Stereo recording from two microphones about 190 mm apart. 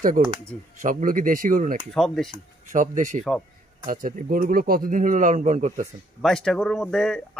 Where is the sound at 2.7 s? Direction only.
40° right (ahead or behind).